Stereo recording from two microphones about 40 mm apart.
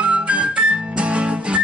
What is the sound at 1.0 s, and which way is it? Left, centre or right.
Music, right.